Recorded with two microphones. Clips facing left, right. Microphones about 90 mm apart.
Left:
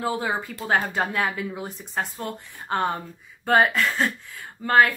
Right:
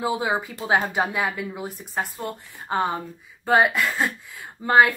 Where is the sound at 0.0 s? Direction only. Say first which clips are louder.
Right 2 dB; 15° right (ahead or behind).